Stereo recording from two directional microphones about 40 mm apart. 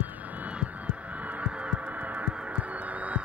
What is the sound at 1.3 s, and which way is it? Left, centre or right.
Heart sounds, right.